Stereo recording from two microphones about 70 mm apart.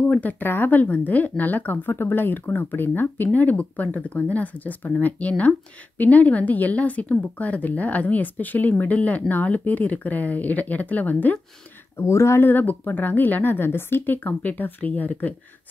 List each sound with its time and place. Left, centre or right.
0.1 s speech: left
5.9 s speech: left
12.0 s speech: left